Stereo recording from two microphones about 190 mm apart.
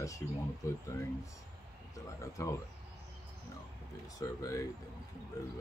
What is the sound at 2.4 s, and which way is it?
Speech, 15° left (ahead or behind).